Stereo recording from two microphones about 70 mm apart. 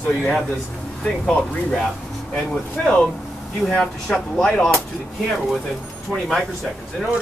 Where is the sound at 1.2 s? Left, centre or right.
Centre.